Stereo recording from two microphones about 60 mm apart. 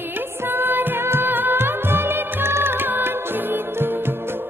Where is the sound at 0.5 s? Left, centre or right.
Right.